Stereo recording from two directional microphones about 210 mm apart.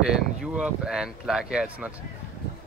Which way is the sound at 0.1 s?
Centre (ahead or behind).